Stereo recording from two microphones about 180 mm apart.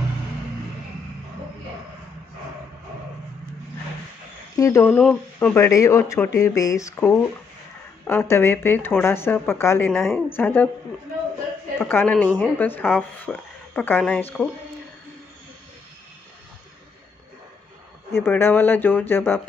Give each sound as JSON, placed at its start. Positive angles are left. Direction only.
{"t": 4.6, "sound": "speech", "side_deg": 15}
{"t": 9.9, "sound": "a woman's voice", "side_deg": 0}
{"t": 11.9, "sound": "speech", "side_deg": 10}
{"t": 18.1, "sound": "speech", "side_deg": 10}